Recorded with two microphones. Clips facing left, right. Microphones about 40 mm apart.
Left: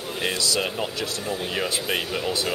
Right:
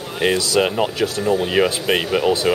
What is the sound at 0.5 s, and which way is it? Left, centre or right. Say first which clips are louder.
Speech: right 8 dB; right.